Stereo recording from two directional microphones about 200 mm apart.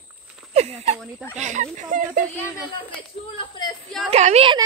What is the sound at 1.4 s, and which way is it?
Speech, 35° right (ahead or behind).